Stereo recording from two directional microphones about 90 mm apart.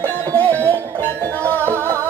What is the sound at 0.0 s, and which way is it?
Music, 20° left (ahead or behind).